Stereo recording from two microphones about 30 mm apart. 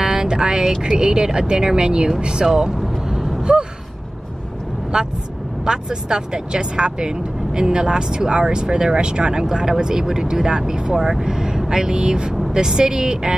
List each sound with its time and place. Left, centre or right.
0.0 s a sound: right
0.8 s speech: right
3.5 s gasp: right
4.9 s speech: right